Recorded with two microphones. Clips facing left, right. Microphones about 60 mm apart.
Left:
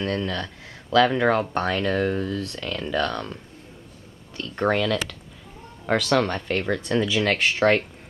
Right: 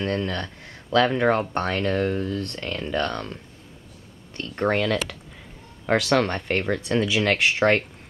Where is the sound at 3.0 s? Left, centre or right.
Centre.